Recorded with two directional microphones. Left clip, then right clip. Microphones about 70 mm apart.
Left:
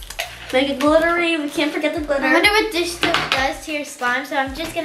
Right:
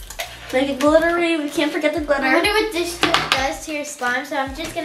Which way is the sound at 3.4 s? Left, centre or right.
Centre.